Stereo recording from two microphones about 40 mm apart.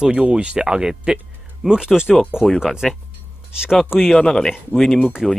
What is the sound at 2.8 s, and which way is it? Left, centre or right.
Speech, centre.